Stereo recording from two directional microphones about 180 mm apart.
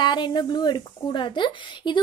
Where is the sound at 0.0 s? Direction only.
25° left (ahead or behind).